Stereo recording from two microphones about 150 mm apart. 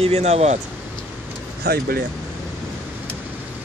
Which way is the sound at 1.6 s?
90° right.